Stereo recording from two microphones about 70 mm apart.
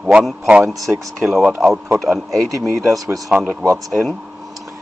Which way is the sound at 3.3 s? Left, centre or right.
Centre.